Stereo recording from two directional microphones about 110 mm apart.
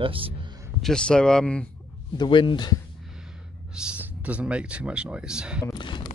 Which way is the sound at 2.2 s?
50° left (ahead or behind).